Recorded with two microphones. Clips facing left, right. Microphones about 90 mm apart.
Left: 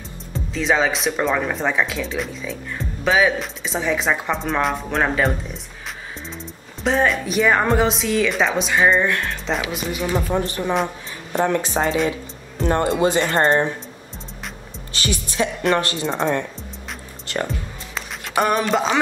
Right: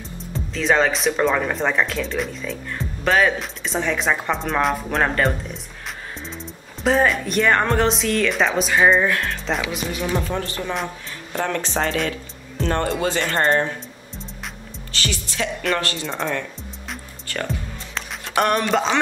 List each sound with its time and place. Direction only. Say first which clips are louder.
0.3 s speech: even; centre (ahead or behind)
10.2 s speech: left 4 dB; 15° left (ahead or behind)
15.0 s speech: left 3 dB; 20° left (ahead or behind)
17.9 s a sound: even; centre (ahead or behind)